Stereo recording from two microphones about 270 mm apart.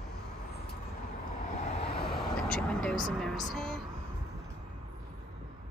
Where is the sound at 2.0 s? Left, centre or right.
Centre.